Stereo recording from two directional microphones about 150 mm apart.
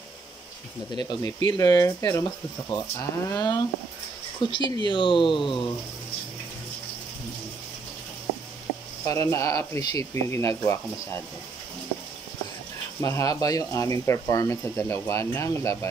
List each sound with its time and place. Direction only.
0.9 s speech: 30° left (ahead or behind)
9.0 s speech: 20° left (ahead or behind)
13.0 s speech: 20° left (ahead or behind)